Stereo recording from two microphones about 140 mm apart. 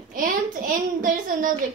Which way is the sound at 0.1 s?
75° right (ahead or behind).